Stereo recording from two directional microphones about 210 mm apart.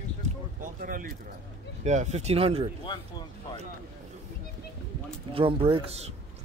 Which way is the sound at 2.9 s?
20° left (ahead or behind).